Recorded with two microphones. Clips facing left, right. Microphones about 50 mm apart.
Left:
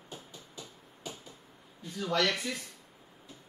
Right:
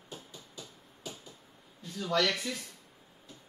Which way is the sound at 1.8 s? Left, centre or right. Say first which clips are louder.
Even; centre.